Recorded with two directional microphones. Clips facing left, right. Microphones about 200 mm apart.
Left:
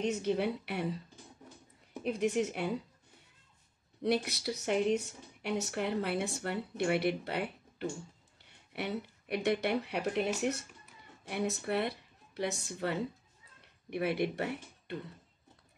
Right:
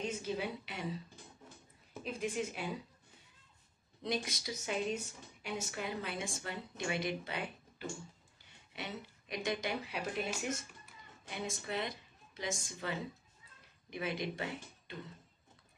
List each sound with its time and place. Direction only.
0.0 s speech: 65° left (ahead or behind)
2.0 s speech: 70° left (ahead or behind)
4.0 s a woman's voice: 65° left (ahead or behind)